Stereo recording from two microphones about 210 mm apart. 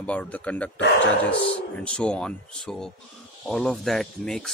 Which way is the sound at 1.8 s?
5° left (ahead or behind).